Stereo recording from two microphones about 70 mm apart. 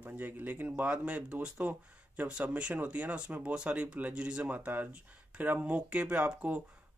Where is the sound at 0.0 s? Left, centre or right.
Right.